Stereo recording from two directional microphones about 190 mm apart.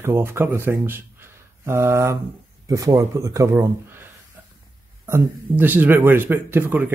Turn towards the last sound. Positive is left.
turn(degrees=-10)  # may be behind; listen again after turning